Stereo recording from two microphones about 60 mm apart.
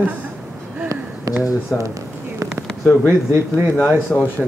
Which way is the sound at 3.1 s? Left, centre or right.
Right.